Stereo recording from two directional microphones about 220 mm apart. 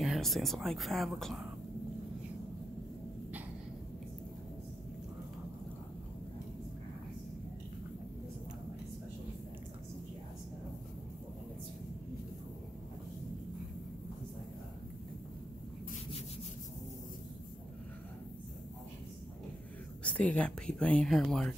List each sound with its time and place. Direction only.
0.0 s speech: centre (ahead or behind)
20.0 s speech: 5° left (ahead or behind)